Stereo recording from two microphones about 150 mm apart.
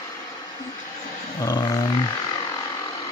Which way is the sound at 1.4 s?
25° left (ahead or behind).